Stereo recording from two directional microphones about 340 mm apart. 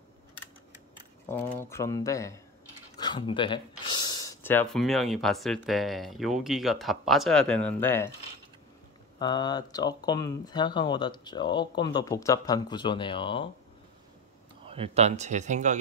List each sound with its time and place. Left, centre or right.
1.3 s speech: centre
9.2 s speech: centre
14.7 s speech: centre